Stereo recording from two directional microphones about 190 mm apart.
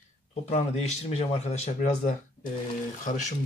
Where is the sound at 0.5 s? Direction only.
35° left (ahead or behind).